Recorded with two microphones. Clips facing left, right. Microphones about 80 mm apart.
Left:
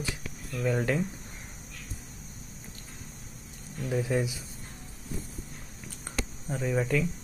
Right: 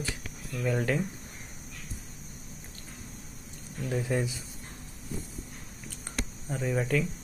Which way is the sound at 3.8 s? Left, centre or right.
Centre.